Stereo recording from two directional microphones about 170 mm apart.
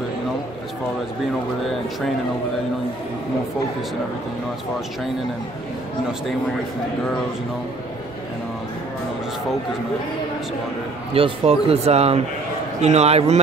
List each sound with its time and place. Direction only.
1.7 s speech: centre (ahead or behind)
11.1 s speech: 35° right (ahead or behind)